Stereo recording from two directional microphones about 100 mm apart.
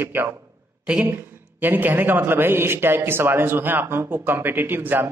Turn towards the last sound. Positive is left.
turn(degrees=-20)  # may be behind; listen again after turning